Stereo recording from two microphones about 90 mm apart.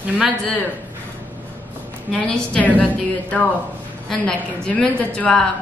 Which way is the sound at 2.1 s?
10° left (ahead or behind).